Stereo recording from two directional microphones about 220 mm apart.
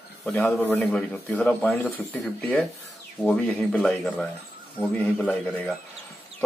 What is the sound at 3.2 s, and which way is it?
A man's voice, 5° left (ahead or behind).